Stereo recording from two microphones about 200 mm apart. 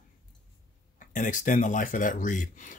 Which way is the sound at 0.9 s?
40° left (ahead or behind).